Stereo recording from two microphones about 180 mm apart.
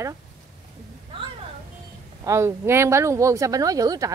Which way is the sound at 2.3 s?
15° right (ahead or behind).